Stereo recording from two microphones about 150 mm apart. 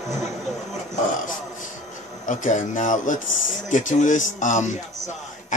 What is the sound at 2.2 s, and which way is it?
Speech, 55° left (ahead or behind).